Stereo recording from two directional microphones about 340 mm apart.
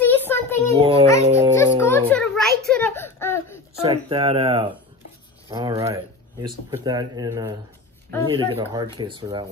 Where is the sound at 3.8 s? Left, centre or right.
Centre.